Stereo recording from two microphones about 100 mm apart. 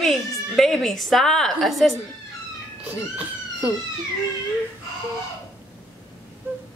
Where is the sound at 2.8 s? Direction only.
15° right (ahead or behind).